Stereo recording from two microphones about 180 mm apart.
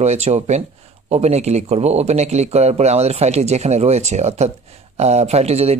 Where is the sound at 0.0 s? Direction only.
35° right (ahead or behind).